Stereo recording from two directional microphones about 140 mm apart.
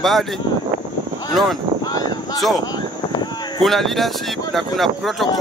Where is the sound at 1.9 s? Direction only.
25° left (ahead or behind).